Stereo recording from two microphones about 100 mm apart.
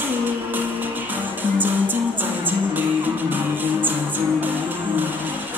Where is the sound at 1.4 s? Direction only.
20° right (ahead or behind).